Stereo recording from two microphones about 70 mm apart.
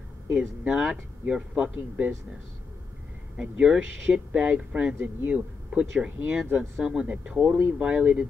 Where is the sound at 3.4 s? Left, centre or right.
Centre.